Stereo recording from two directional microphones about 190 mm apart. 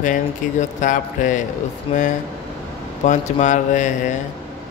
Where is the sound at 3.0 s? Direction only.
40° left (ahead or behind).